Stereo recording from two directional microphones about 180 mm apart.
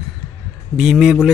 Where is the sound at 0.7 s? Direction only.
Centre (ahead or behind).